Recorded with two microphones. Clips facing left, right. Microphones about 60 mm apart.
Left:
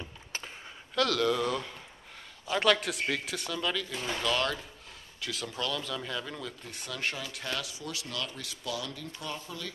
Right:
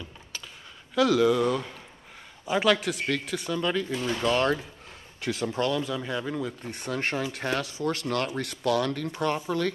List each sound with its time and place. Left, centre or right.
0.0 s a sound: left
0.9 s speech: centre
3.6 s speech: right
4.2 s speech: right
5.8 s speech: centre
6.7 s speech: right